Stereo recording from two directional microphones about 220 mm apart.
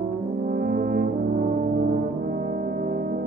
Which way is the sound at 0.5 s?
40° right (ahead or behind).